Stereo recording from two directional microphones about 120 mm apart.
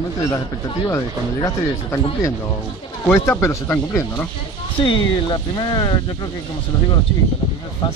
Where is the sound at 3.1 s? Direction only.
20° left (ahead or behind).